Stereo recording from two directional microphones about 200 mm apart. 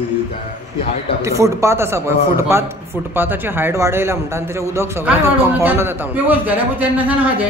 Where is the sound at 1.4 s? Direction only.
15° right (ahead or behind).